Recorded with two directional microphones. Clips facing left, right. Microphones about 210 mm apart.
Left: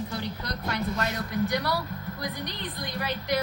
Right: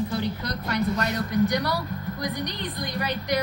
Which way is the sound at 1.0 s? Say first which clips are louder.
Right 5 dB; 5° left (ahead or behind).